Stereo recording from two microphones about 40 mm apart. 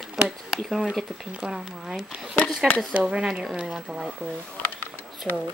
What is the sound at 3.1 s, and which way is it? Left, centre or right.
Speech, right.